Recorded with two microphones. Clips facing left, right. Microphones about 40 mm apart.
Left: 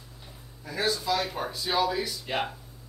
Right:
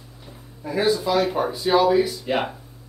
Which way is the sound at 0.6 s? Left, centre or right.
Right.